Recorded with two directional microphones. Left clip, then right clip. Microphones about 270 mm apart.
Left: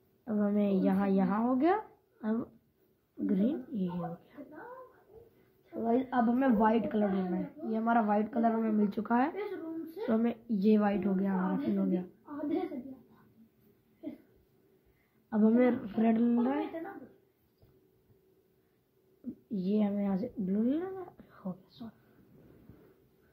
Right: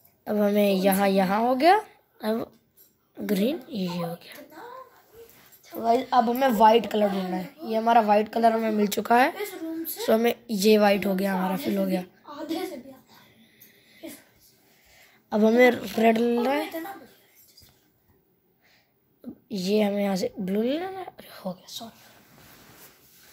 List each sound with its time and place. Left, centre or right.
0.2 s a woman's voice: right
5.8 s a woman's voice: right
15.2 s a woman's voice: right
19.5 s a woman's voice: right